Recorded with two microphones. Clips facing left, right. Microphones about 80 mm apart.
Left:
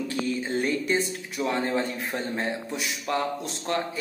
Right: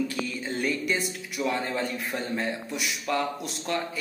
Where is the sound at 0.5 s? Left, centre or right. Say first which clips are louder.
Left 1 dB; left.